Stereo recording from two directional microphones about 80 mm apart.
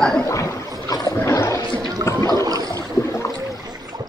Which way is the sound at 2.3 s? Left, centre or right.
Right.